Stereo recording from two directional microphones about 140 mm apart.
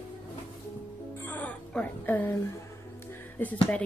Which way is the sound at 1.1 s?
15° left (ahead or behind).